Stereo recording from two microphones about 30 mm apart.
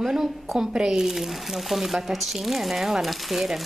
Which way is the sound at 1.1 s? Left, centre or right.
Centre.